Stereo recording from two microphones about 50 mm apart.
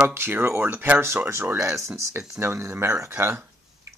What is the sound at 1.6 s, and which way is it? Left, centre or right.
Speech, right.